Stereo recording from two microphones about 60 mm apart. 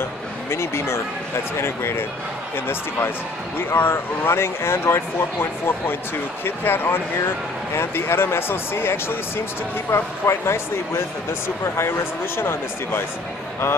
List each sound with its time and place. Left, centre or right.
0.5 s speech: left
11.6 s speech: left